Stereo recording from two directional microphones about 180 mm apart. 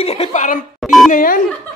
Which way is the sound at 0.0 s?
35° left (ahead or behind).